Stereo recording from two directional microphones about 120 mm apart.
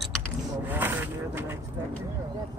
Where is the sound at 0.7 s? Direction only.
15° right (ahead or behind).